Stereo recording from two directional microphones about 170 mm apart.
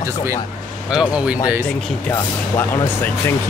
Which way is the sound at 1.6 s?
15° left (ahead or behind).